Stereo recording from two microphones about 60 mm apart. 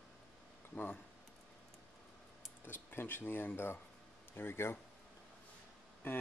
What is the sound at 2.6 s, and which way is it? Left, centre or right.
Speech, left.